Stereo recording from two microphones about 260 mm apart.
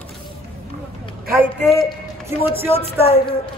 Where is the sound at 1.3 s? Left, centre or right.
Centre.